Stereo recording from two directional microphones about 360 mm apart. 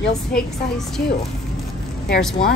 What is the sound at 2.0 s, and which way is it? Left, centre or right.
Speech, left.